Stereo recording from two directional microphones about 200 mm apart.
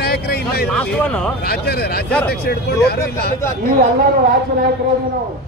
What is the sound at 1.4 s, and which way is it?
A man's voice, 50° left (ahead or behind).